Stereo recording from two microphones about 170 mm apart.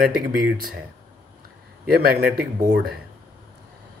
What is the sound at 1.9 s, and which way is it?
Speech, 60° right (ahead or behind).